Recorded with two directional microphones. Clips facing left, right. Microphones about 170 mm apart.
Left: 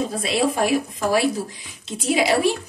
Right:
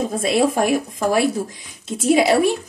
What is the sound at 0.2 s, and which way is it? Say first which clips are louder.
Speech: right 4 dB; 50° right (ahead or behind).